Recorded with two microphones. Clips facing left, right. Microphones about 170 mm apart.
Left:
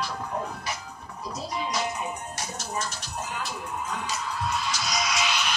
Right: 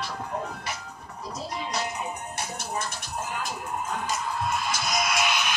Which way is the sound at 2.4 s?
55° right (ahead or behind).